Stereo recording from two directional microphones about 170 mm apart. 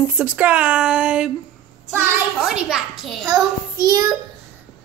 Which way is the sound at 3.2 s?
20° right (ahead or behind).